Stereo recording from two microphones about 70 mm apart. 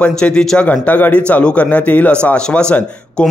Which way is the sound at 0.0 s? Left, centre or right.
Centre.